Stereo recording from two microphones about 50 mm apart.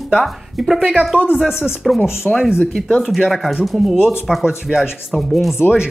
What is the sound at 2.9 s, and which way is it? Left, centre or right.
Speech, centre.